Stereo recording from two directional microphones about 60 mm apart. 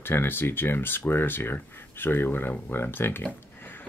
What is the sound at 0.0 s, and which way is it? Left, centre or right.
Speech, left.